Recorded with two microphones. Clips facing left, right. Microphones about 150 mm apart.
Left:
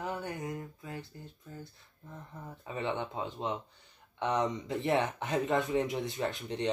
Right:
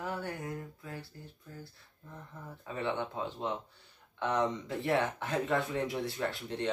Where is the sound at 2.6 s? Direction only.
20° left (ahead or behind).